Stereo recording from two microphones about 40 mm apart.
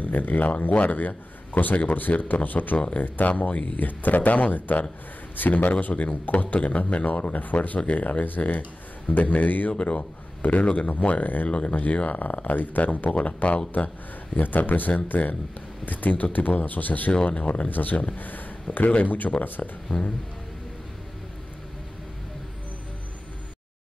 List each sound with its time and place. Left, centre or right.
0.0 s a man's voice: left
11.4 s speech: left
13.1 s a man's voice: left
17.1 s a man's voice: left
19.9 s speech: left